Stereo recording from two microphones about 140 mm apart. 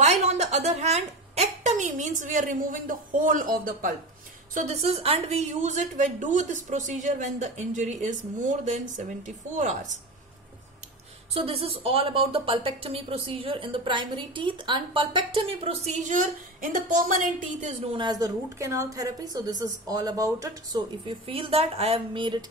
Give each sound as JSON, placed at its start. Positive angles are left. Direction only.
{"t": 0.0, "sound": "a woman's voice", "side_deg": -55}
{"t": 4.6, "sound": "a woman's voice", "side_deg": -50}
{"t": 11.3, "sound": "a woman's voice", "side_deg": -45}
{"t": 17.9, "sound": "a woman's voice", "side_deg": -30}
{"t": 21.3, "sound": "a woman's voice", "side_deg": -45}